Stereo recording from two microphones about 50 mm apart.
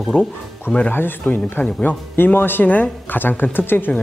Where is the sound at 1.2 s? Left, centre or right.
Left.